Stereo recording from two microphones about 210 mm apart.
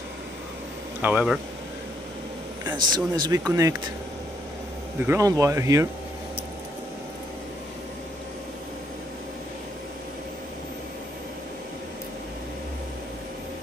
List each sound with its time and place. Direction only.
1.0 s speech: 5° right (ahead or behind)
2.9 s speech: 20° right (ahead or behind)
5.0 s speech: 15° right (ahead or behind)